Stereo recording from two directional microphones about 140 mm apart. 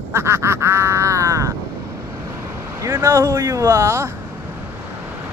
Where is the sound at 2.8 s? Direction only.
25° right (ahead or behind).